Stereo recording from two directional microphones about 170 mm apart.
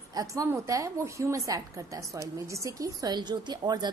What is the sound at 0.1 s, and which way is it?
A woman's voice, 20° right (ahead or behind).